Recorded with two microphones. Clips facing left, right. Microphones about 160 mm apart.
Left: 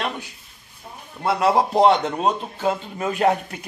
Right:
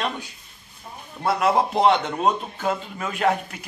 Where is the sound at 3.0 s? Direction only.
35° left (ahead or behind).